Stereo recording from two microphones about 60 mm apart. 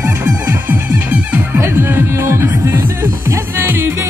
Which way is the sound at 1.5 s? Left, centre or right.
Right.